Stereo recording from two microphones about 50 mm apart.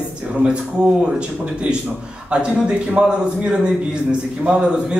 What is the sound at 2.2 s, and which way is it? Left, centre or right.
Speech, centre.